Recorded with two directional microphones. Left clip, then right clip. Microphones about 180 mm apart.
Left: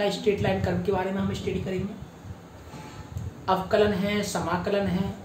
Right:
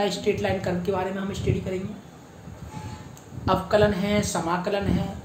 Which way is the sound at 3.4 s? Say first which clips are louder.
Right 2 dB; 40° right (ahead or behind).